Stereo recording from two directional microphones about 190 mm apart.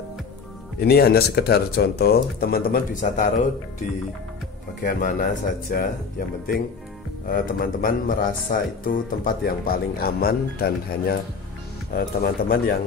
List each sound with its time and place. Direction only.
0.7 s speech: 55° left (ahead or behind)
4.8 s speech: 45° left (ahead or behind)